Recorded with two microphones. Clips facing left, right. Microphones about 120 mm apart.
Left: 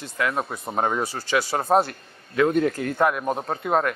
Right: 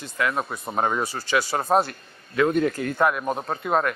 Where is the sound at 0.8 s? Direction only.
35° left (ahead or behind).